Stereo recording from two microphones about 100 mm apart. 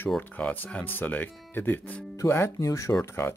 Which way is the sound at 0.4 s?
10° left (ahead or behind).